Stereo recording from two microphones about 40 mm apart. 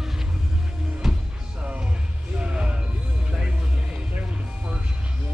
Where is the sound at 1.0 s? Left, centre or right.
Centre.